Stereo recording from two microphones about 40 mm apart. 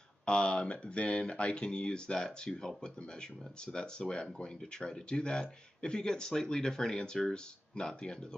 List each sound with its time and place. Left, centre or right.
0.2 s speech: left